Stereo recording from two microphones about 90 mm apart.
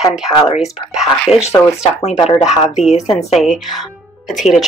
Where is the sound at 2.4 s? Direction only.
Centre (ahead or behind).